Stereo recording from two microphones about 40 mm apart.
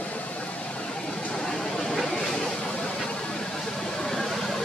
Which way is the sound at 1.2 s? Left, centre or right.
Left.